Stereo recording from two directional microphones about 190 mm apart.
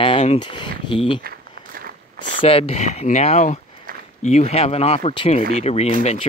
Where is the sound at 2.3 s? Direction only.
30° left (ahead or behind).